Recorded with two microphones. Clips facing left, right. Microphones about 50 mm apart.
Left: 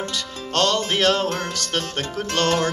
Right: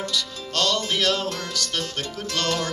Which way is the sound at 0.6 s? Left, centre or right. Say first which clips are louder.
Left 4 dB; left.